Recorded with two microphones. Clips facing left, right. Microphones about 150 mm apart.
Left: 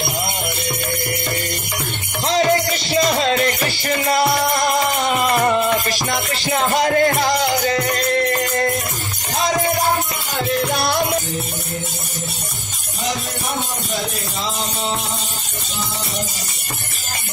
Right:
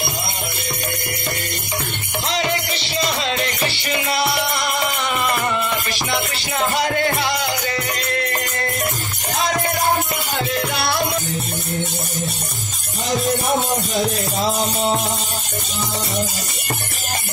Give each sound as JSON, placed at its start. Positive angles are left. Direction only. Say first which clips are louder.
{"t": 2.2, "sound": "music", "louder": "left 7 dB", "side_deg": 40}